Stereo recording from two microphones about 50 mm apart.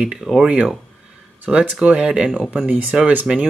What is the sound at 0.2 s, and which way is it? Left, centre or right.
Speech, centre.